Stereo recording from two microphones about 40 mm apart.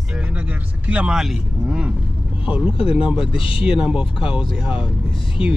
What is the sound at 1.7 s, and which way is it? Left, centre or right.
Speech, right.